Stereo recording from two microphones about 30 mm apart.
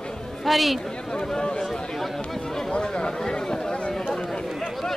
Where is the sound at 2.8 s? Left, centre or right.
Left.